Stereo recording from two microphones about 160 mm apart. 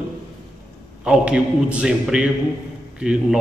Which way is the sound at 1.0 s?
5° right (ahead or behind).